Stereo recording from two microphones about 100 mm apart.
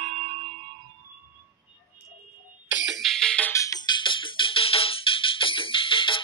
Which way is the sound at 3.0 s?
5° left (ahead or behind).